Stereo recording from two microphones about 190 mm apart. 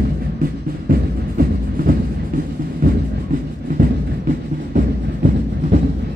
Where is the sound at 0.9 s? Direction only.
50° right (ahead or behind).